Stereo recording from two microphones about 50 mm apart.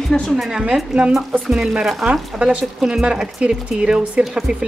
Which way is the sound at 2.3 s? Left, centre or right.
Centre.